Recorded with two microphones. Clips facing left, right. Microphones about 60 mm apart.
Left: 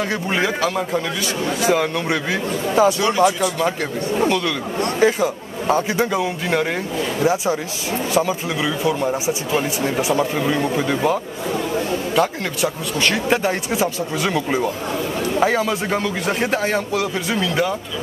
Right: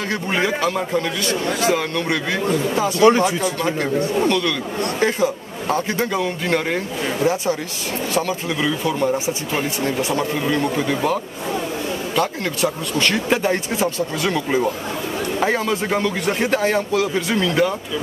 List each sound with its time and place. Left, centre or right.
0.1 s a man's voice: centre
1.2 s speech: centre
3.0 s speech: right
4.2 s speech: centre
8.1 s speech: centre
12.2 s a man's voice: centre